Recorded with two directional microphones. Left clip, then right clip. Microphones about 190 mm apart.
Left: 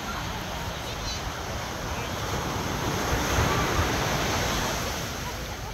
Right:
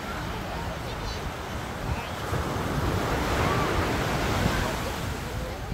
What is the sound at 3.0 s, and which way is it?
Waves, 45° left (ahead or behind).